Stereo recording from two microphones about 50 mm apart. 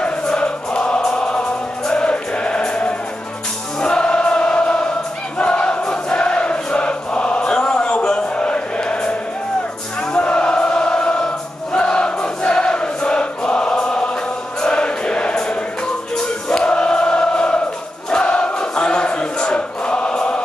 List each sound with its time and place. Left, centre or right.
0.0 s choir: centre
1.9 s music: left
3.8 s choir: centre
5.4 s chant: left
10.1 s chant: left
11.7 s choir: centre
14.6 s music: left
16.4 s choir: centre